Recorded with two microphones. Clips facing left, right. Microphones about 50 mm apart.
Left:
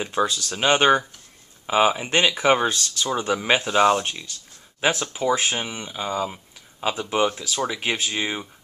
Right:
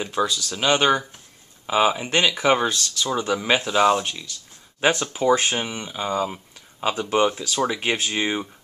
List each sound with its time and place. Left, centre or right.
0.0 s speech: centre